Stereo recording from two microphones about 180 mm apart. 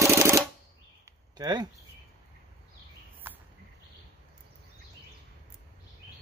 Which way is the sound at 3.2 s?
10° right (ahead or behind).